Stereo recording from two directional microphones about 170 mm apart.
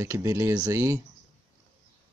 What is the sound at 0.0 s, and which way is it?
Speech, 15° right (ahead or behind).